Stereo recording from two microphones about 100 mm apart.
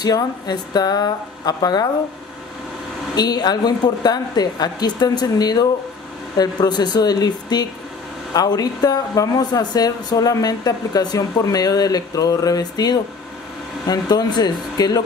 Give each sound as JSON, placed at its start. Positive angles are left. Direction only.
{"t": 0.0, "sound": "speech", "side_deg": 40}
{"t": 3.2, "sound": "a woman's voice", "side_deg": 45}